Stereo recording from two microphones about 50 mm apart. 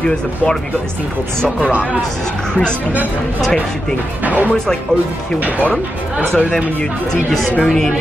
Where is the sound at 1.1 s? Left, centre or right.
Right.